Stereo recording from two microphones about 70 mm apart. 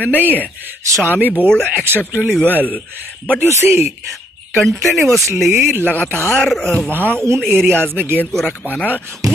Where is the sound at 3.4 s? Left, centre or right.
Right.